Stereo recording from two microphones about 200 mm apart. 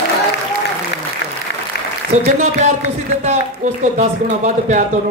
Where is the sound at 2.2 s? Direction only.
30° right (ahead or behind).